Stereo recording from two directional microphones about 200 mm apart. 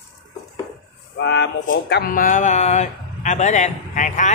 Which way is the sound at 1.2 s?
60° left (ahead or behind).